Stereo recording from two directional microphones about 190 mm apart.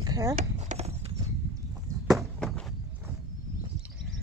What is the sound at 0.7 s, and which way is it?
Clip-clop, 35° right (ahead or behind).